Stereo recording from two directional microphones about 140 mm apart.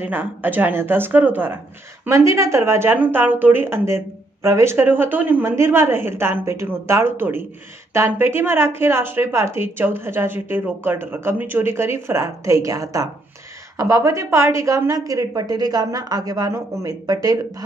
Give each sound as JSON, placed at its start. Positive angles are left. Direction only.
{"t": 0.0, "sound": "a woman's voice", "side_deg": -15}